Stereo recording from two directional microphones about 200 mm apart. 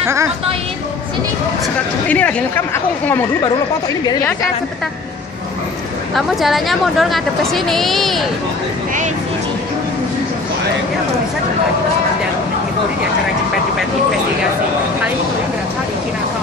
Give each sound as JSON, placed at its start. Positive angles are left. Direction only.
{"t": 0.0, "sound": "speech", "side_deg": -15}
{"t": 2.0, "sound": "a woman's voice", "side_deg": 5}
{"t": 6.1, "sound": "a woman's voice", "side_deg": 0}